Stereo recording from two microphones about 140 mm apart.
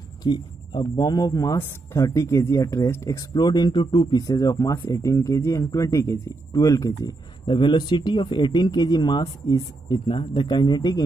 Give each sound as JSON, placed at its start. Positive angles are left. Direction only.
{"t": 0.2, "sound": "speech", "side_deg": 30}